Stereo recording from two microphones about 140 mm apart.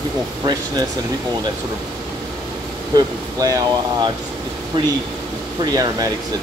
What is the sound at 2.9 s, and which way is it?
Speech, 25° right (ahead or behind).